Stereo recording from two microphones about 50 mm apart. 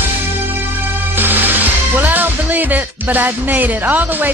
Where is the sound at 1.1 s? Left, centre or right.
Right.